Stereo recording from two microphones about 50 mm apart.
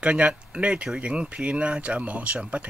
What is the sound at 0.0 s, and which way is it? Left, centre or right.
Speech, right.